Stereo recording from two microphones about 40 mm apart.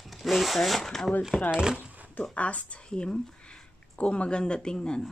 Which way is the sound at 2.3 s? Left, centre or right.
Left.